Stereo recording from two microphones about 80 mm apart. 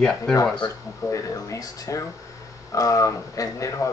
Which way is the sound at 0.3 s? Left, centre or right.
Centre.